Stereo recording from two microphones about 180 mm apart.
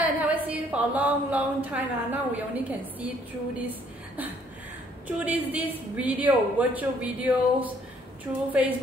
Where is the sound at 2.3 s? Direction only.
10° right (ahead or behind).